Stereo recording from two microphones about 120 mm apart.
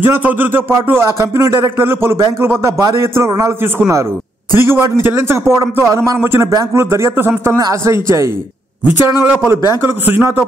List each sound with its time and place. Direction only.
0.0 s speech: 15° right (ahead or behind)